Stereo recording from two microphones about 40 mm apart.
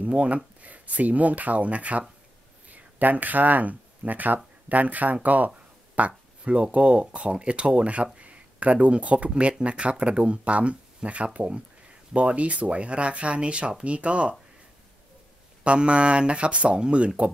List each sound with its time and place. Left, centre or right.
0.0 s speech: right
5.9 s a sound: right
6.7 s speech: right
15.6 s speech: right